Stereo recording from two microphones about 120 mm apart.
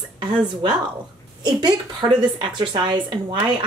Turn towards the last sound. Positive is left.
turn(degrees=-40)  # may be behind; listen again after turning